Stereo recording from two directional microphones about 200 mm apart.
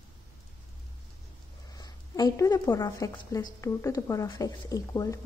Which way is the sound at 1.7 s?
20° left (ahead or behind).